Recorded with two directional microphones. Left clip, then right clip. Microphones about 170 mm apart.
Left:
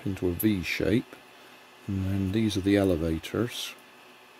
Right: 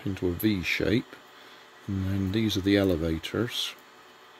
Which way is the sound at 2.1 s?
Centre (ahead or behind).